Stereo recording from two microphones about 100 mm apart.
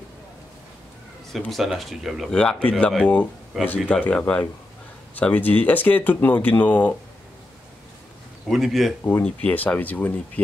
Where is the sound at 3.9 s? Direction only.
15° left (ahead or behind).